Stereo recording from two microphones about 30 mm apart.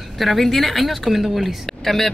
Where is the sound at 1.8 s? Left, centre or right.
Centre.